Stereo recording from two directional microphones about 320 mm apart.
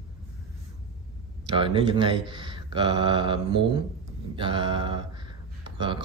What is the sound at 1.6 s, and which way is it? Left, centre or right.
Speech, centre.